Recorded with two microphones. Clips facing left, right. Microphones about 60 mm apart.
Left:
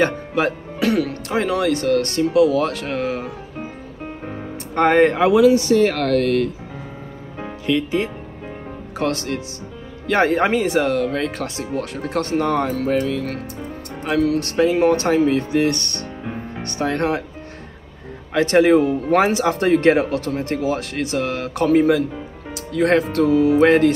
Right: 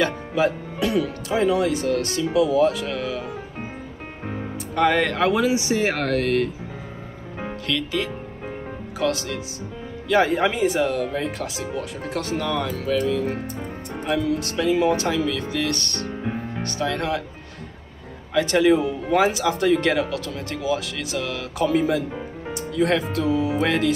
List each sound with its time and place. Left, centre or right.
0.3 s speech: left
0.7 s speech: left
4.7 s speech: left
5.5 s speech: centre
7.6 s speech: left
8.9 s speech: left
11.4 s speech: left
11.8 s speech: left
14.5 s speech: left
16.9 s speech: left
18.3 s speech: left